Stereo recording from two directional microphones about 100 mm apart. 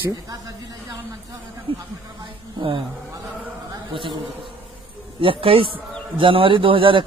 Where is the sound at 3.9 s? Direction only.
60° right (ahead or behind).